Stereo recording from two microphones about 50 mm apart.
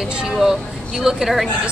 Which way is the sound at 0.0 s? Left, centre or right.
Centre.